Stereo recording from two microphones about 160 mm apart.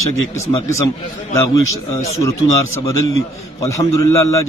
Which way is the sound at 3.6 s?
20° left (ahead or behind).